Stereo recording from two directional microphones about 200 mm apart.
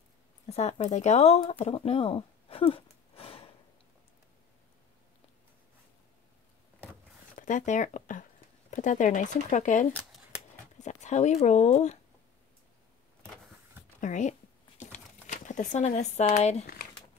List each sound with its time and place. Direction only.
0.5 s speech: 35° left (ahead or behind)
7.3 s speech: 40° left (ahead or behind)
14.0 s speech: 35° left (ahead or behind)
14.8 s a sound: 35° left (ahead or behind)